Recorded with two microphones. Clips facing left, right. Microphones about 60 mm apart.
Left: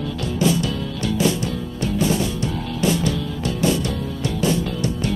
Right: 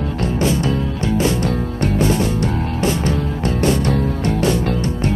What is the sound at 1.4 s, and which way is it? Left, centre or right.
Music, right.